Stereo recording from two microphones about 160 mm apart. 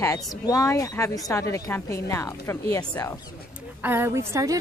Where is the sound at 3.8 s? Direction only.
15° right (ahead or behind).